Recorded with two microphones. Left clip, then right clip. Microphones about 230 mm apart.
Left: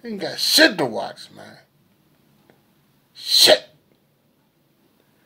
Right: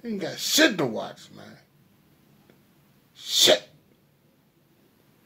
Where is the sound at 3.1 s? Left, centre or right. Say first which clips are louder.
Left 6 dB; left.